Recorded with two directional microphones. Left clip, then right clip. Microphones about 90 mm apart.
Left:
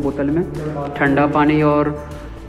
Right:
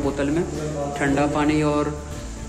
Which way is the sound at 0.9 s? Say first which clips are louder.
Left 7 dB; 5° right (ahead or behind).